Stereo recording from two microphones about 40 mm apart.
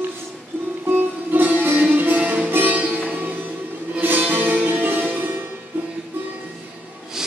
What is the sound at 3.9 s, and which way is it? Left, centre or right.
Music, right.